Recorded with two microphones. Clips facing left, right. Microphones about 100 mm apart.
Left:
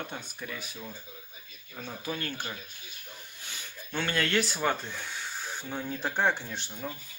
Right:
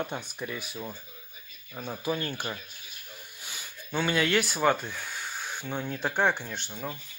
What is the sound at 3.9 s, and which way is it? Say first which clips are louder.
Speech: right 3 dB; 5° right (ahead or behind).